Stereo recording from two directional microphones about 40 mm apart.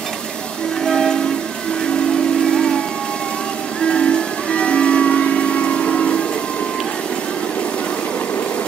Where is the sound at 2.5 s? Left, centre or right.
Centre.